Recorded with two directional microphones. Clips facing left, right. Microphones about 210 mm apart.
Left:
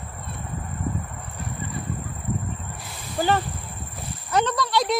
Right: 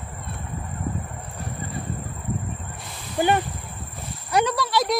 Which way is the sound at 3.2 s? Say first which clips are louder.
Right 2 dB; 15° right (ahead or behind).